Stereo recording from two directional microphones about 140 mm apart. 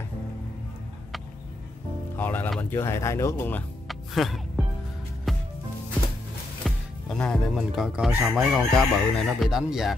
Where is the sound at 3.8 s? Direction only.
Centre (ahead or behind).